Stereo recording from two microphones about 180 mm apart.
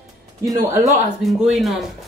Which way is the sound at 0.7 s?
20° right (ahead or behind).